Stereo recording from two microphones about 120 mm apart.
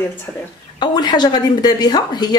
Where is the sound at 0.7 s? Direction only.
40° left (ahead or behind).